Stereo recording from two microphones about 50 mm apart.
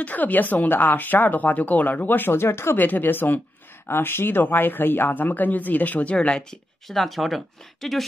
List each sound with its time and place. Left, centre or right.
0.0 s speech: left
2.8 s speech: left
6.1 s speech: centre
6.9 s speech: centre